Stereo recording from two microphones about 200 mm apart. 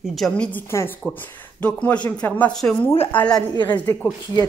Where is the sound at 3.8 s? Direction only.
10° left (ahead or behind).